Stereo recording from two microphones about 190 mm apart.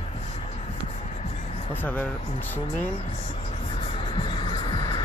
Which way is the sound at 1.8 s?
10° left (ahead or behind).